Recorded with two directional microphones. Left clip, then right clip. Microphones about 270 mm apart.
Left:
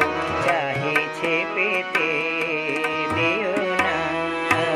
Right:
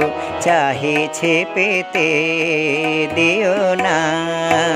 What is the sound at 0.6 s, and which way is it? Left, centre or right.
Music, right.